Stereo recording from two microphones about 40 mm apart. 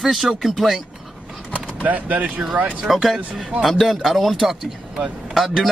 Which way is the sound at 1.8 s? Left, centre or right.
Right.